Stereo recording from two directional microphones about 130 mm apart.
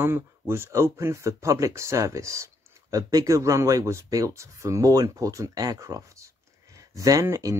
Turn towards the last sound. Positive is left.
turn(degrees=-25)  # may be behind; listen again after turning